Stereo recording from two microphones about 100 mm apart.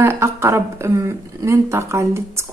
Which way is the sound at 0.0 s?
25° right (ahead or behind).